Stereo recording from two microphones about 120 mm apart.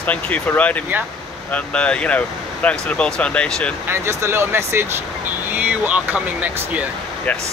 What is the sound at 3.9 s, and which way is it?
Speech, 20° right (ahead or behind).